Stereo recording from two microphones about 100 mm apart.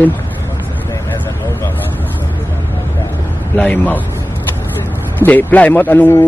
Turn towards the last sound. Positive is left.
turn(degrees=20)  # may be behind; listen again after turning